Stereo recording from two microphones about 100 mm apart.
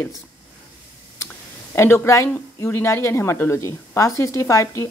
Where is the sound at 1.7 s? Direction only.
25° left (ahead or behind).